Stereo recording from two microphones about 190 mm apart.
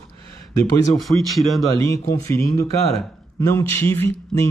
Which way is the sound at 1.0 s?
Centre (ahead or behind).